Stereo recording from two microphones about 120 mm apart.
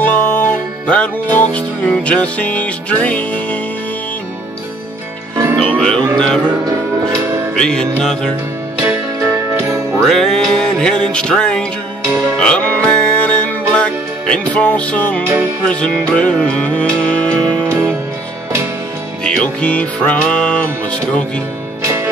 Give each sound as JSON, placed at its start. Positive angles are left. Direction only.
{"t": 0.0, "sound": "music", "side_deg": 10}
{"t": 5.6, "sound": "music", "side_deg": 5}
{"t": 7.5, "sound": "music", "side_deg": 5}
{"t": 8.8, "sound": "music", "side_deg": -20}
{"t": 10.0, "sound": "music", "side_deg": 5}
{"t": 13.7, "sound": "speech", "side_deg": 5}
{"t": 15.6, "sound": "music", "side_deg": 10}
{"t": 17.6, "sound": "music", "side_deg": -20}
{"t": 19.2, "sound": "music", "side_deg": 10}
{"t": 21.8, "sound": "music", "side_deg": -20}